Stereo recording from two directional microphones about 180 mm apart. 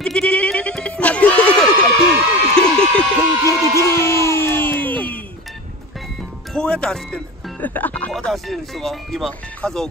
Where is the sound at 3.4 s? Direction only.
20° right (ahead or behind).